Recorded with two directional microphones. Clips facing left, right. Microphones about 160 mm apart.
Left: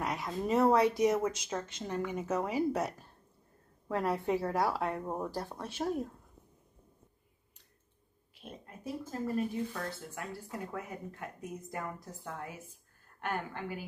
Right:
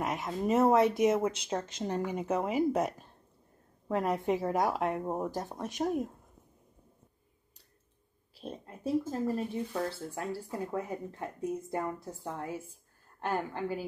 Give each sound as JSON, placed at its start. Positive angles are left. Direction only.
{"t": 0.0, "sound": "a woman's voice", "side_deg": -20}
{"t": 8.4, "sound": "speech", "side_deg": -30}